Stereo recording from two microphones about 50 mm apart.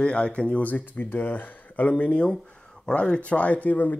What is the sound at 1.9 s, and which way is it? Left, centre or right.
Speech, left.